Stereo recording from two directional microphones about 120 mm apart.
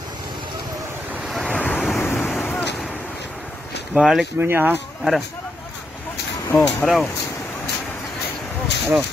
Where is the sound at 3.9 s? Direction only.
Centre (ahead or behind).